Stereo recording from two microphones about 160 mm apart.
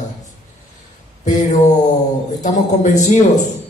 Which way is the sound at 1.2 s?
50° left (ahead or behind).